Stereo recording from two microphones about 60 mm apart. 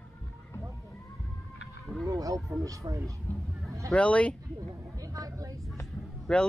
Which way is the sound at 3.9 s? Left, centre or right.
Left.